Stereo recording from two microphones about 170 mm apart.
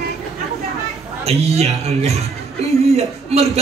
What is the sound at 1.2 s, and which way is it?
Speech, 40° right (ahead or behind).